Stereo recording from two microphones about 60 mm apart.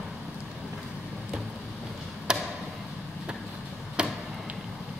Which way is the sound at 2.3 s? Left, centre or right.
Centre.